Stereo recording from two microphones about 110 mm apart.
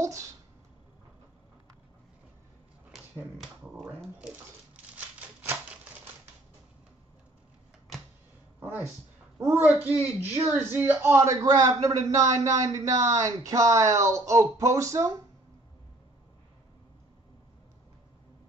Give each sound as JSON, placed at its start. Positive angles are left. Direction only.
{"t": 0.0, "sound": "a sound", "side_deg": -30}
{"t": 3.3, "sound": "speech", "side_deg": 0}
{"t": 4.9, "sound": "typewriter", "side_deg": -15}
{"t": 8.5, "sound": "a sound", "side_deg": -20}
{"t": 9.4, "sound": "speech", "side_deg": -20}
{"t": 11.4, "sound": "a man's voice", "side_deg": -30}